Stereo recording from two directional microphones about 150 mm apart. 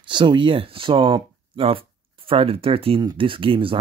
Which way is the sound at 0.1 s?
30° right (ahead or behind).